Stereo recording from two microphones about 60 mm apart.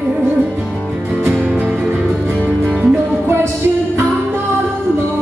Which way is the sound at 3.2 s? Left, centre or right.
Right.